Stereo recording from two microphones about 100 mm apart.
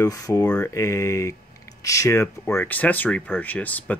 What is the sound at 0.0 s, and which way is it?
Speech, 30° left (ahead or behind).